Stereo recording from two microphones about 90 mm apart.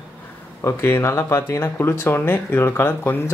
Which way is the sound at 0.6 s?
30° left (ahead or behind).